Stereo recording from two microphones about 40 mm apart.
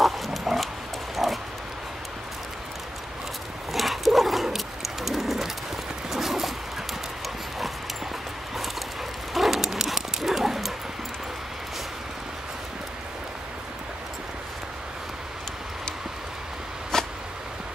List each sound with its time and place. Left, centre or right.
0.0 s pig: centre
1.1 s dog: centre
3.7 s bird: centre
6.0 s a sound: centre
9.3 s dog: centre
16.9 s a sound: centre